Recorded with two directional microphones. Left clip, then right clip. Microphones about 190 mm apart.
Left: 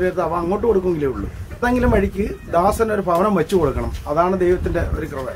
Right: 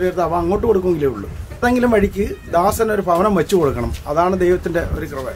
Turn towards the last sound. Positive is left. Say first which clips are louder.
# right 2 dB
turn(degrees=-15)  # may be behind; listen again after turning